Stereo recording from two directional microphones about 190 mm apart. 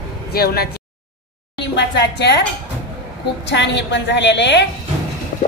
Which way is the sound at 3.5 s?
70° left (ahead or behind).